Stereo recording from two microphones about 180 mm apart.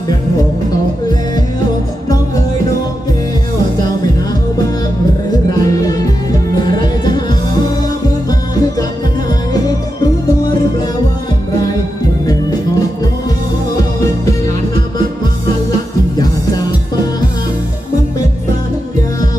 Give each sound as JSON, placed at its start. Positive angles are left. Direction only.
{"t": 5.5, "sound": "music", "side_deg": 20}
{"t": 8.3, "sound": "music", "side_deg": 20}